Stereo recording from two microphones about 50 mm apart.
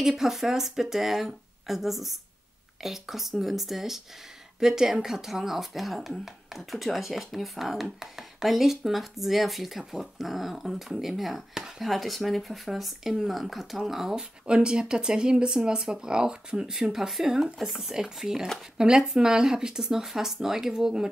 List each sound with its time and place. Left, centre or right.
0.0 s speech: centre
14.4 s speech: centre